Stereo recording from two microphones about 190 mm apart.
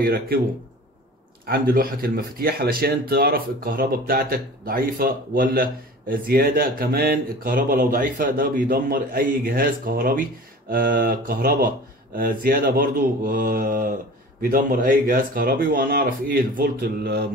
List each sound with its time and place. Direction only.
0.0 s speech: 50° right (ahead or behind)
1.4 s speech: 50° right (ahead or behind)